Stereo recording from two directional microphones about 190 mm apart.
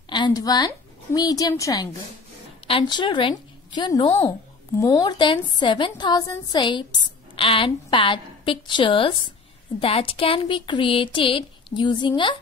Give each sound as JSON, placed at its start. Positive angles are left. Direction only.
{"t": 0.1, "sound": "a woman's voice", "side_deg": 20}